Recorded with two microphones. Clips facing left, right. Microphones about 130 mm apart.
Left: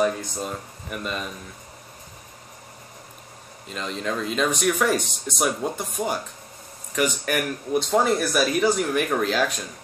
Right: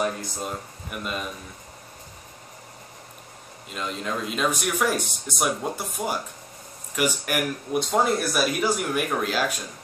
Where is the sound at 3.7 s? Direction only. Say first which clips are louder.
Left 2 dB; 5° right (ahead or behind).